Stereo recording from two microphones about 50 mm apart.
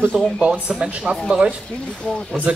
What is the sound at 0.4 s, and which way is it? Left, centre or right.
Speech, right.